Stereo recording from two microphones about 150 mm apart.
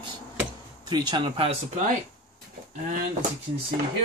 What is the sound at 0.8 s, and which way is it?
Speech, 30° right (ahead or behind).